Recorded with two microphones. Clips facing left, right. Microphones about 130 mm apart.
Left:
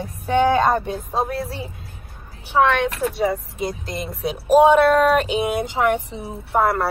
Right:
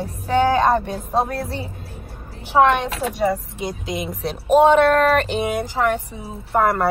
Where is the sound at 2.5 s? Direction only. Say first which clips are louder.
Right 2 dB; 15° right (ahead or behind).